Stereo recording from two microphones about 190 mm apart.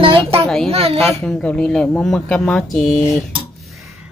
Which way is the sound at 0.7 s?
30° right (ahead or behind).